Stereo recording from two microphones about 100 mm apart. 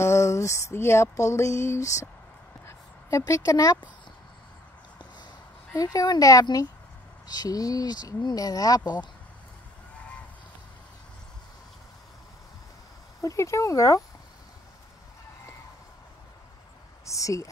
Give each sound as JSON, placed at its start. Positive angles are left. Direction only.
{"t": 0.0, "sound": "music", "side_deg": 30}
{"t": 2.6, "sound": "speech", "side_deg": 30}
{"t": 5.8, "sound": "speech", "side_deg": 40}
{"t": 13.2, "sound": "speech", "side_deg": 30}
{"t": 17.0, "sound": "speech", "side_deg": 30}